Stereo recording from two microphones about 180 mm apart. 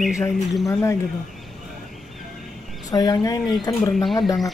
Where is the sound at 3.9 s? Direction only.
Centre (ahead or behind).